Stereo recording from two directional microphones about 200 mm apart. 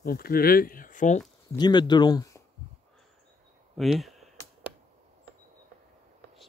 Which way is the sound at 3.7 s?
Centre (ahead or behind).